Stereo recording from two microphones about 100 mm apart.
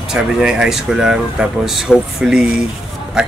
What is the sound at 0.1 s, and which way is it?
Speech, 5° right (ahead or behind).